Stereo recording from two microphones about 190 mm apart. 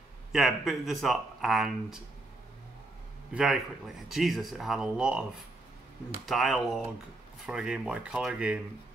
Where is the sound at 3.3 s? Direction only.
Centre (ahead or behind).